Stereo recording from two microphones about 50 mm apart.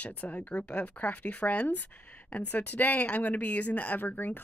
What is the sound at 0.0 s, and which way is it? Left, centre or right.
Speech, left.